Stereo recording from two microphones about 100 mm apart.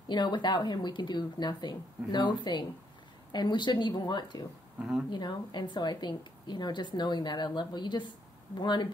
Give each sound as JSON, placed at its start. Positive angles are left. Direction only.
{"t": 0.1, "sound": "a woman's voice", "side_deg": 50}